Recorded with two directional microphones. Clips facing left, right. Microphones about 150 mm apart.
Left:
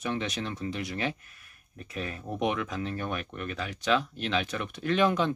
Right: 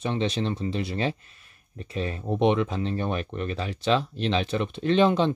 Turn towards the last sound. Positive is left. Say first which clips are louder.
# right 5 dB
turn(degrees=-25)  # may be behind; listen again after turning